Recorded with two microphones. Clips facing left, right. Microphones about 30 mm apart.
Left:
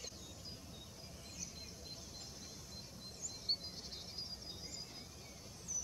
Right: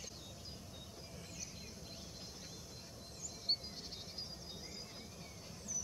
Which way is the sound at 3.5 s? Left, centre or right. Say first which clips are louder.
Right 2 dB; centre.